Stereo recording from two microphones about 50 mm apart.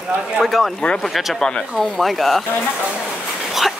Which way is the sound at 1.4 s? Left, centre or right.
Centre.